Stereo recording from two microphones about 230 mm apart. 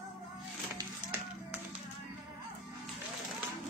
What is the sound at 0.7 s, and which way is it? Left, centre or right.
Music, centre.